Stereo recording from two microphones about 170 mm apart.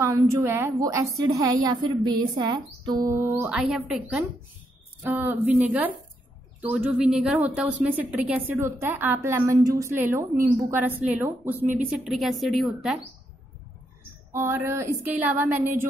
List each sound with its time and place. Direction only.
0.0 s a woman's voice: 15° right (ahead or behind)
3.4 s a woman's voice: centre (ahead or behind)
14.3 s a woman's voice: 15° right (ahead or behind)